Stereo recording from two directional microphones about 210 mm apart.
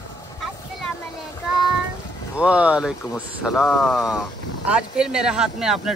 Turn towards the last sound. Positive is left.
turn(degrees=0)  # may be behind; listen again after turning